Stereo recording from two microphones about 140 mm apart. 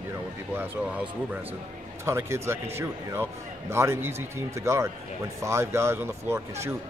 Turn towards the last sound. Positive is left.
turn(degrees=-20)  # may be behind; listen again after turning